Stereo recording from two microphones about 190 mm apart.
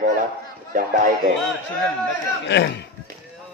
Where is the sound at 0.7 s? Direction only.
45° right (ahead or behind).